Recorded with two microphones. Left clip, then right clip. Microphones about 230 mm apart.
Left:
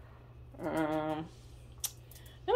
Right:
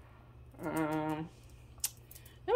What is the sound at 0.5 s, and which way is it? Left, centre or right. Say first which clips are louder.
Music: left 2 dB; centre.